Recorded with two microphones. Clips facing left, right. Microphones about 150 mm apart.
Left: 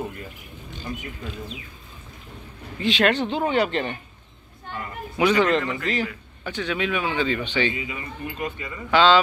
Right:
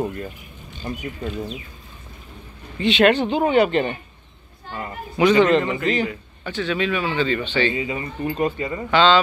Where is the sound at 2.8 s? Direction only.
5° right (ahead or behind).